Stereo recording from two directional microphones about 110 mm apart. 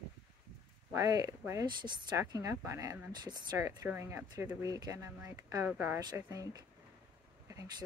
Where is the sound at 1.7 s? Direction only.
45° right (ahead or behind).